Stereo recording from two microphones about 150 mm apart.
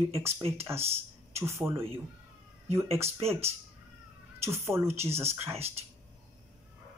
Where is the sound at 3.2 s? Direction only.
45° right (ahead or behind).